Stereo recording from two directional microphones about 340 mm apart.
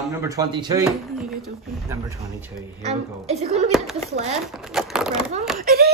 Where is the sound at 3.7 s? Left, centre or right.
Centre.